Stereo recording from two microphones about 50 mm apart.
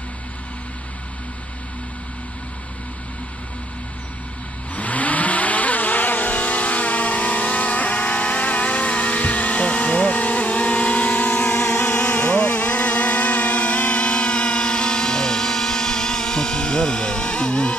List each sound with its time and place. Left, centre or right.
4.7 s vehicle: left